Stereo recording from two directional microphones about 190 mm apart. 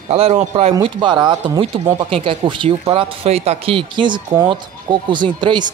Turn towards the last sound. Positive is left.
turn(degrees=-25)  # may be behind; listen again after turning